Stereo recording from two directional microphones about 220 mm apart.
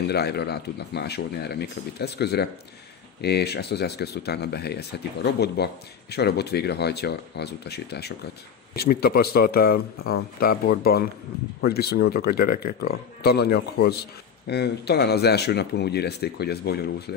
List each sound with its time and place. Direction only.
0.1 s speech: 50° left (ahead or behind)